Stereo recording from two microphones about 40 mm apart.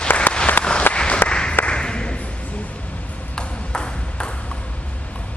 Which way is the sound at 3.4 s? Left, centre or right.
Centre.